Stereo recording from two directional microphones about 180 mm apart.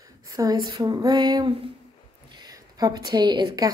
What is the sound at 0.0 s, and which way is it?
A woman's voice, 20° right (ahead or behind).